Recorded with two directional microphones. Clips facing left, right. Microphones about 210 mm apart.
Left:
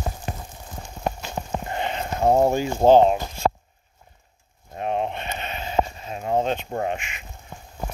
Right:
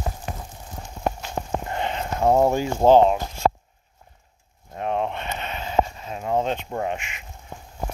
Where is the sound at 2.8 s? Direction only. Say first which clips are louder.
Even; 20° left (ahead or behind).